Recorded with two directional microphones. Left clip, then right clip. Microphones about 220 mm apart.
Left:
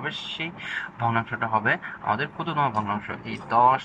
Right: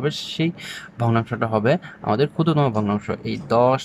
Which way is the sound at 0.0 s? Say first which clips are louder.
Right 6 dB; 85° right.